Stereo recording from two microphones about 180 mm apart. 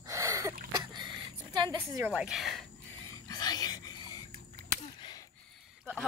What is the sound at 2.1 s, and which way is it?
Speech, centre (ahead or behind).